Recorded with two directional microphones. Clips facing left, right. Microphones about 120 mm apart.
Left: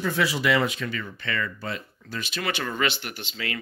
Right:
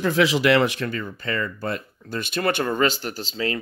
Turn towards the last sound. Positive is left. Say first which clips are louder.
# right 7 dB
turn(degrees=-35)  # may be behind; listen again after turning